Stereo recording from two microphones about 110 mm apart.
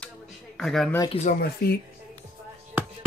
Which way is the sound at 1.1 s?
55° left (ahead or behind).